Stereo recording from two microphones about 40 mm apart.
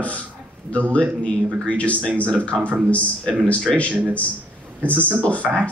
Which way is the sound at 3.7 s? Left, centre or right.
Left.